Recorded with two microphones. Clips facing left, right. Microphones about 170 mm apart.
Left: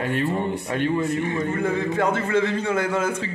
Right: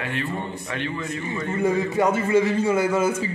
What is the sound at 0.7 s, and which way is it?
Speech, 45° left (ahead or behind).